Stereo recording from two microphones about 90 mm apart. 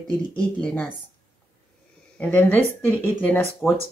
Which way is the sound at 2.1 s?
20° left (ahead or behind).